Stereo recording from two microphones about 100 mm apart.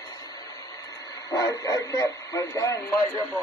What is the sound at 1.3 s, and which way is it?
Speech, 40° left (ahead or behind).